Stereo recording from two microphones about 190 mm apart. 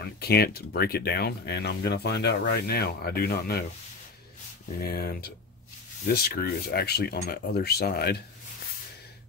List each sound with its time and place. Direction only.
0.0 s speech: 55° left (ahead or behind)
4.7 s speech: 55° left (ahead or behind)